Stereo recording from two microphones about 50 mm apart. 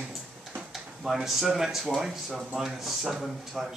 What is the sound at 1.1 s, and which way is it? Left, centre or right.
A man's voice, centre.